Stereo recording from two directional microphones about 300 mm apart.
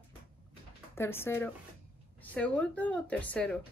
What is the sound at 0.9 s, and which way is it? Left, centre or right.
Speech, centre.